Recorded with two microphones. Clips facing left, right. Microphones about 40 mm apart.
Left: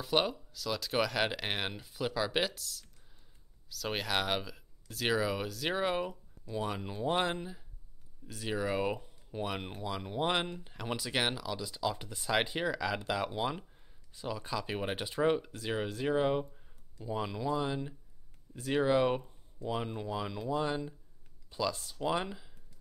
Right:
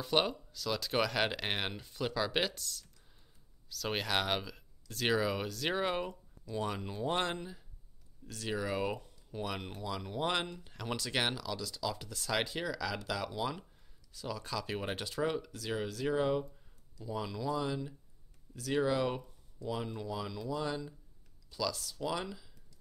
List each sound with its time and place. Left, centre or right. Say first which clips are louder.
0.0 s speech: left 1 dB; centre
15.1 s speech: left 6 dB; left